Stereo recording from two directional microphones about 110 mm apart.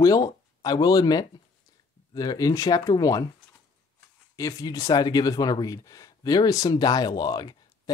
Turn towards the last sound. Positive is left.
turn(degrees=35)  # may be behind; listen again after turning